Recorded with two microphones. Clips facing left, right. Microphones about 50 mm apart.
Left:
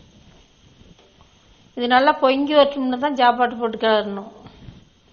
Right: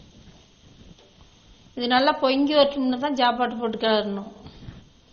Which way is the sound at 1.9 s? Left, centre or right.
Centre.